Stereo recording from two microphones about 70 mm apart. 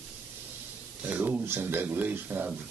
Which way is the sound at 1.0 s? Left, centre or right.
Right.